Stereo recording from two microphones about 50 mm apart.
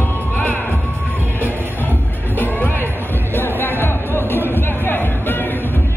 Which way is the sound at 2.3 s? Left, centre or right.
Left.